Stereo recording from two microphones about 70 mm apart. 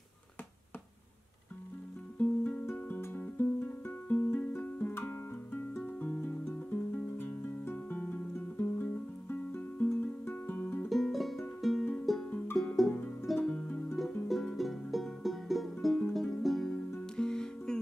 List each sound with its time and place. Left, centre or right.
2.1 s music: left
10.9 s music: centre
12.9 s music: left
13.4 s music: centre
13.9 s music: centre